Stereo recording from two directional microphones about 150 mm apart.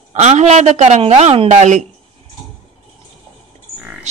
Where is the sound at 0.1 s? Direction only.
50° right (ahead or behind).